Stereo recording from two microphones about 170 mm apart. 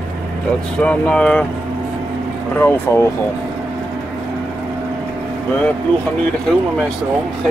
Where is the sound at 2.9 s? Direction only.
15° left (ahead or behind).